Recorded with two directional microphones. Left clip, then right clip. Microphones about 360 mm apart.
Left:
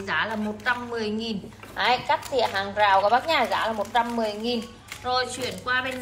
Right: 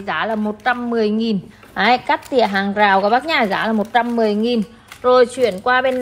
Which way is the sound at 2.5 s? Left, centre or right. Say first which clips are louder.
Right 7 dB; right.